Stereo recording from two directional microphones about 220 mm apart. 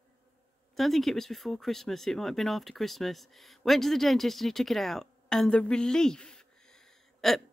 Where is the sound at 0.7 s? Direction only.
Centre (ahead or behind).